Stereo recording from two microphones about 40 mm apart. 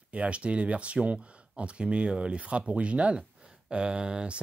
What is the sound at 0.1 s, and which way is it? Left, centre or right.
Speech, right.